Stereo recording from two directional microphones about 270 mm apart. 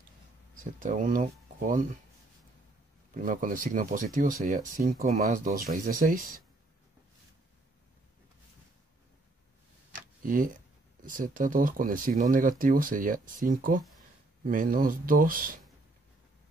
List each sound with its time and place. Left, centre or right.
0.7 s speech: right
3.2 s speech: right
9.9 s tick-tock: right
11.1 s speech: right